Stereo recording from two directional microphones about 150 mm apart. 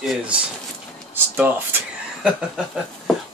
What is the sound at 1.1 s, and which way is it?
Speech, 15° right (ahead or behind).